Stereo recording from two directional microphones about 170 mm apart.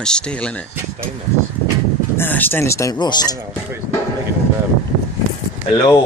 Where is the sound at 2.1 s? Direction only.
10° left (ahead or behind).